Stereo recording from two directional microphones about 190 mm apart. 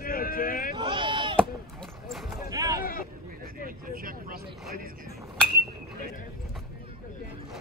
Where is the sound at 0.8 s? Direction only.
25° right (ahead or behind).